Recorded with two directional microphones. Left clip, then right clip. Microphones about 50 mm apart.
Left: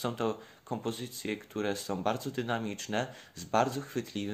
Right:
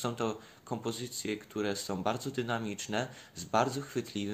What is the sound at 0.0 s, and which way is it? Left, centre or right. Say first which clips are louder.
Speech: left 1 dB; left.